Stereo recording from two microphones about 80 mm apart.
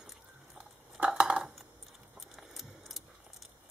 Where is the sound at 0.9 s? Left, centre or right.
Centre.